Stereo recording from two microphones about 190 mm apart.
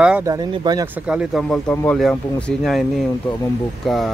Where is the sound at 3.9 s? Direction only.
Centre (ahead or behind).